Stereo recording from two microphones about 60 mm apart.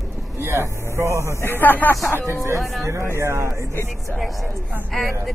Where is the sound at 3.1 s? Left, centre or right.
Right.